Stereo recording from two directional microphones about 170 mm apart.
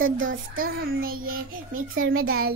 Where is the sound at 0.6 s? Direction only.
60° right (ahead or behind).